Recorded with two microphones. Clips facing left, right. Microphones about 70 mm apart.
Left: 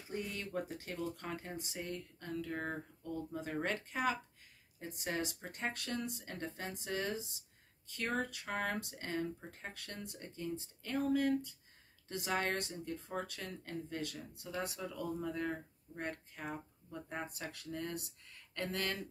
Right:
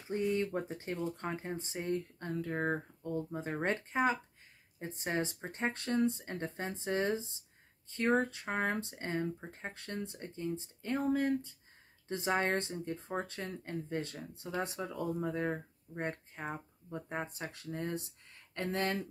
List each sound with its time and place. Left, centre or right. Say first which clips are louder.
0.1 s speech: right 8 dB; right